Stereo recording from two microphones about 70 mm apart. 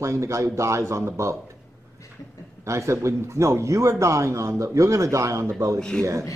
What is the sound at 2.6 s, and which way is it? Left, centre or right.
A man's voice, right.